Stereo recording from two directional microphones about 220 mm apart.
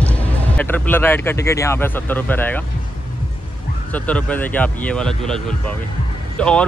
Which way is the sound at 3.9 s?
5° left (ahead or behind).